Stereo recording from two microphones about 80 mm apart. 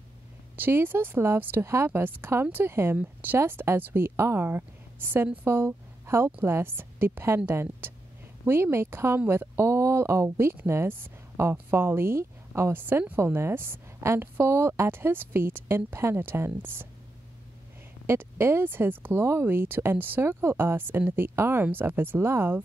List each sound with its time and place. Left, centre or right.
0.6 s a woman's voice: right
18.0 s a woman's voice: right